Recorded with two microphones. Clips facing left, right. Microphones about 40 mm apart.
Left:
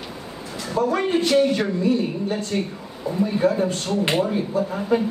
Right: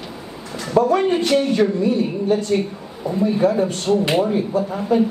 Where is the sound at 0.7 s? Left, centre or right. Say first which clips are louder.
Right 5 dB; right.